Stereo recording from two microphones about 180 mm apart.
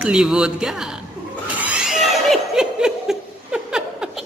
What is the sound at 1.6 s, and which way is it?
Laughter, 5° right (ahead or behind).